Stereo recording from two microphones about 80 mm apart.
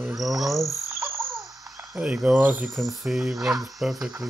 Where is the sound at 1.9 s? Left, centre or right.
Centre.